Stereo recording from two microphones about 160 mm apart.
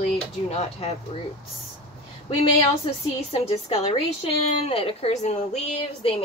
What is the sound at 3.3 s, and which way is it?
A woman's voice, 40° left (ahead or behind).